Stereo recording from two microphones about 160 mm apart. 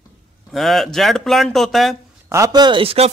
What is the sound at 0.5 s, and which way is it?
Speech, centre (ahead or behind).